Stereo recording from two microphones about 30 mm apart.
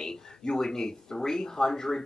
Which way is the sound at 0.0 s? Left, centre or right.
Left.